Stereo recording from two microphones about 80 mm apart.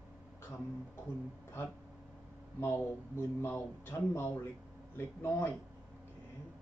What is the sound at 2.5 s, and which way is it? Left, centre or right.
Speech, left.